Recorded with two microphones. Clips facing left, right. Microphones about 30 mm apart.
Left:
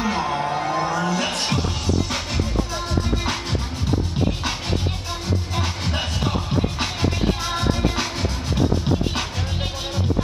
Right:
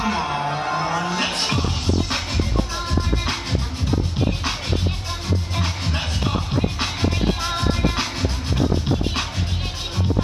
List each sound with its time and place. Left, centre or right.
0.0 s music: centre
0.7 s music: right